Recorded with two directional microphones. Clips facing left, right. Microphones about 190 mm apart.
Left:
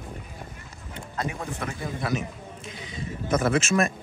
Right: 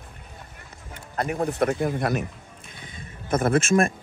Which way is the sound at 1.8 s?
60° right (ahead or behind).